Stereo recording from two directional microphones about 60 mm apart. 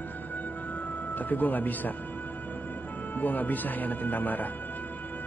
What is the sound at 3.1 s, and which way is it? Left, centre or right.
Speech, left.